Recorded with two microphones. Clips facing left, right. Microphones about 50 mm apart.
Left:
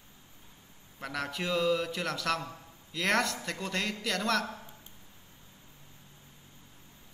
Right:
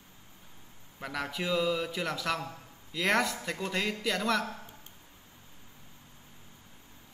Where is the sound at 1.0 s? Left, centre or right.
Centre.